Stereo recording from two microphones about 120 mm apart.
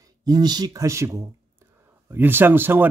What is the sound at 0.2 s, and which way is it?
Speech, 35° right (ahead or behind).